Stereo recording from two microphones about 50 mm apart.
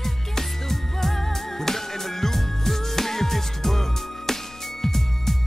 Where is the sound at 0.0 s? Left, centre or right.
Centre.